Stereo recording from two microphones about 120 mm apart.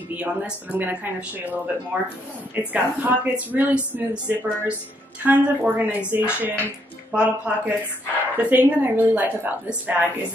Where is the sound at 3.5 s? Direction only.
15° right (ahead or behind).